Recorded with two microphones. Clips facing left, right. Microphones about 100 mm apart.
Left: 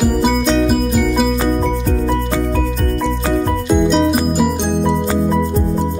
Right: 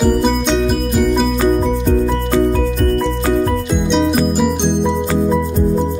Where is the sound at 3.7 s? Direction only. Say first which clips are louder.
Left 2 dB; 5° left (ahead or behind).